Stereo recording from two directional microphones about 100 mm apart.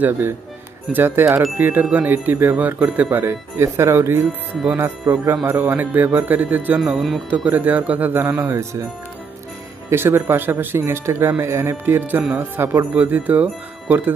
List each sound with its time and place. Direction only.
0.9 s speech: 20° right (ahead or behind)
5.3 s speech: 20° right (ahead or behind)
6.8 s speech: 5° right (ahead or behind)
7.2 s speech: 15° right (ahead or behind)
9.8 s speech: 25° right (ahead or behind)